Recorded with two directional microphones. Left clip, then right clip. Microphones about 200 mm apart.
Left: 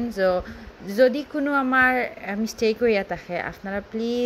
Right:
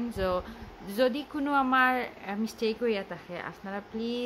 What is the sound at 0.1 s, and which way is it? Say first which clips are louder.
A woman's voice: left 9 dB; 10° left (ahead or behind).